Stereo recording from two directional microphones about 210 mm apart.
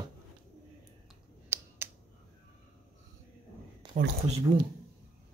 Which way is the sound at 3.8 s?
20° right (ahead or behind).